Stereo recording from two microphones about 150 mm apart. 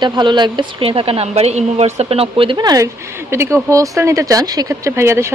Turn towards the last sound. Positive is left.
turn(degrees=-15)  # may be behind; listen again after turning